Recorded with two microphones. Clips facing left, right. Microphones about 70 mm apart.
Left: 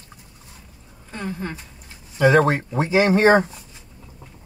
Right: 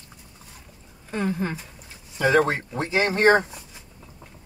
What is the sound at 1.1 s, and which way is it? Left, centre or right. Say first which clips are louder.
Speech: right 3 dB; centre.